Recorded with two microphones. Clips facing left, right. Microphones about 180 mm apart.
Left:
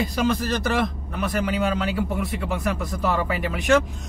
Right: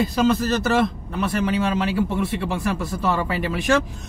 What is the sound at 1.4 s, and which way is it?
Speech, 30° right (ahead or behind).